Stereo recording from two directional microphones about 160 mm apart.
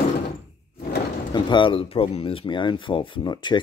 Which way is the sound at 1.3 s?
30° left (ahead or behind).